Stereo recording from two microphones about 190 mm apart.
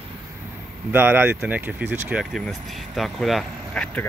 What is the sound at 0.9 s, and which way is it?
Speech, 10° right (ahead or behind).